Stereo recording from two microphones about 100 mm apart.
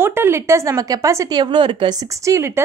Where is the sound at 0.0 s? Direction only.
25° right (ahead or behind); by 2.0 s 55° right (ahead or behind).